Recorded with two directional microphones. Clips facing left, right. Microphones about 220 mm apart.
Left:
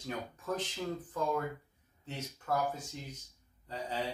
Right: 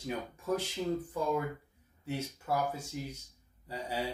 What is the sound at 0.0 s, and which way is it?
Speech, 10° right (ahead or behind).